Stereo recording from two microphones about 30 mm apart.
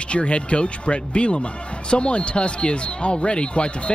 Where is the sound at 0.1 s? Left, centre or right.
Left.